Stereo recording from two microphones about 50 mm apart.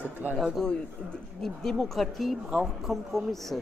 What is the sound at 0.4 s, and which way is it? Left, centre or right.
A man's voice, centre.